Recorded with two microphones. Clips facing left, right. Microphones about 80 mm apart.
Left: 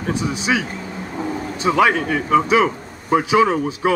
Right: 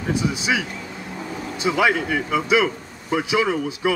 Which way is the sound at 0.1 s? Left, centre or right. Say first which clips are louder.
Left 2 dB; left.